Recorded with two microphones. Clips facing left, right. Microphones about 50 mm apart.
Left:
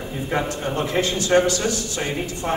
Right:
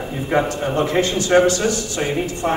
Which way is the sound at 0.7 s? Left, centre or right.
Right.